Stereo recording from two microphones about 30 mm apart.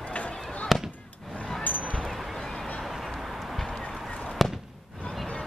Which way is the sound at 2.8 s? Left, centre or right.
Centre.